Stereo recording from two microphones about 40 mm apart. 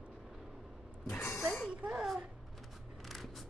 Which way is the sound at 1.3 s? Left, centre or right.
Centre.